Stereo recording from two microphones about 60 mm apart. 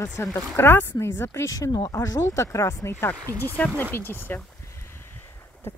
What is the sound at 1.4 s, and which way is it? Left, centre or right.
Speech, left.